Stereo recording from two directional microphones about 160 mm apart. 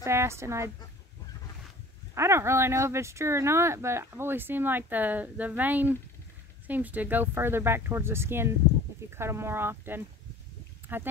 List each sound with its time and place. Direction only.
0.0 s speech: 15° right (ahead or behind)
2.1 s speech: 15° right (ahead or behind)